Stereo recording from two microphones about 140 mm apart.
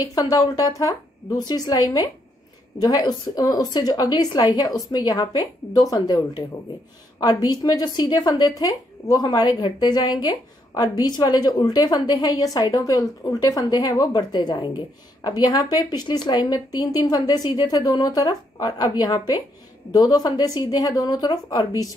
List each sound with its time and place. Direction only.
0.1 s a woman's voice: 25° left (ahead or behind)